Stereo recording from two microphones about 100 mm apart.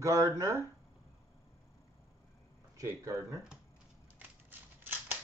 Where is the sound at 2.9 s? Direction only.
30° right (ahead or behind).